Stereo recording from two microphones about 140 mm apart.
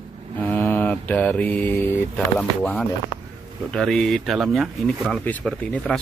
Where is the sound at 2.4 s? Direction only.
5° left (ahead or behind).